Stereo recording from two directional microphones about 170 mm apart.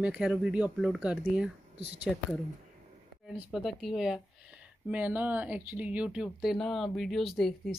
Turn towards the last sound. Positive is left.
turn(degrees=0)  # may be behind; listen again after turning